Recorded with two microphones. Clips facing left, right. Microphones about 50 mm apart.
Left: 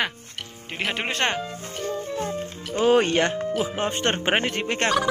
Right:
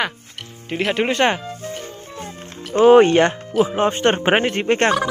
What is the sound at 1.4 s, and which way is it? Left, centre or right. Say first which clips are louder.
Music: right 1 dB; centre.